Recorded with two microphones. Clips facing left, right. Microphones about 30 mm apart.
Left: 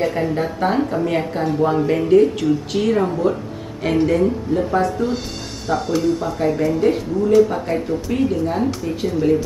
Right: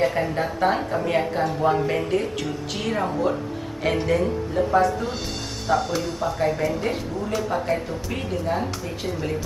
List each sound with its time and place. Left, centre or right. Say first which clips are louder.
0.0 s speech: left 3 dB; centre